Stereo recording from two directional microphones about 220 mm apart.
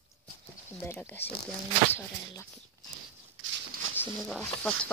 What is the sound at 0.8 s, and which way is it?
Speech, 10° left (ahead or behind).